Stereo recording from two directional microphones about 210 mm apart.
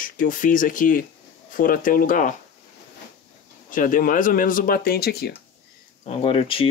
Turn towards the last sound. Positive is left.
turn(degrees=25)  # may be behind; listen again after turning